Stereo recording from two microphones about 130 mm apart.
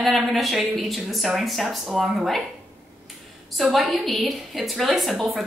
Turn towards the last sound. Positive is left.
turn(degrees=0)  # may be behind; listen again after turning